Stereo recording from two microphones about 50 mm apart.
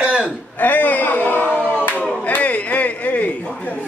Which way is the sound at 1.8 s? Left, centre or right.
Left.